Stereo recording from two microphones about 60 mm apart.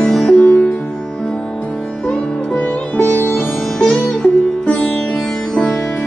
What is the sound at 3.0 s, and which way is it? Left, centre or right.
Music, left.